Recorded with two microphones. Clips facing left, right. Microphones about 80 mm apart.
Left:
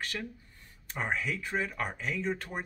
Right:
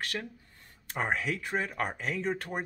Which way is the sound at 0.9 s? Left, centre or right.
Right.